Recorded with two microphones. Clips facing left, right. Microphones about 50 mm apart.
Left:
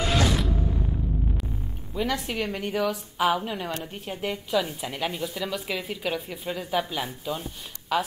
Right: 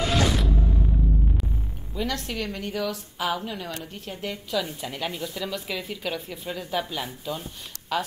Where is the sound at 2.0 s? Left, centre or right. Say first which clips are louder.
Left 2 dB; centre.